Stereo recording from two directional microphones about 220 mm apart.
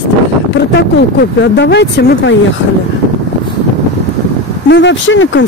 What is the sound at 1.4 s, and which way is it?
Speech, 50° left (ahead or behind).